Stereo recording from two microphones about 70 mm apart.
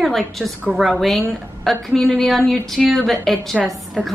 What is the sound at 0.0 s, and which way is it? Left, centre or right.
A woman's voice, centre.